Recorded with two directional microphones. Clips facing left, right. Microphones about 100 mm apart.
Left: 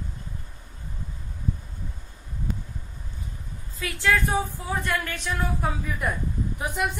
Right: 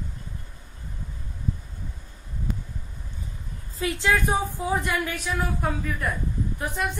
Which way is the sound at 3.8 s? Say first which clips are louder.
Right 1 dB; 25° right (ahead or behind).